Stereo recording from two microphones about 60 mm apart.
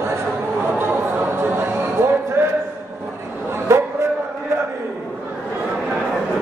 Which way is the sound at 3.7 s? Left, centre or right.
Right.